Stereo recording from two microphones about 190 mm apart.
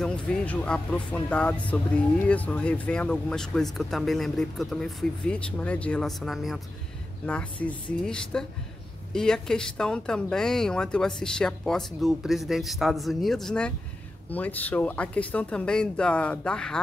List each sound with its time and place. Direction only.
0.0 s speech: 5° left (ahead or behind)
7.6 s speech: 5° left (ahead or behind)